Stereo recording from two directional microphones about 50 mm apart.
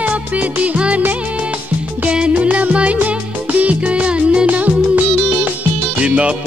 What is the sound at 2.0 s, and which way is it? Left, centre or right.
Music, right.